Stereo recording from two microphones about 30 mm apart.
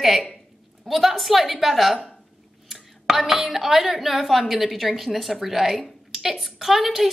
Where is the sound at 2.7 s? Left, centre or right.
Centre.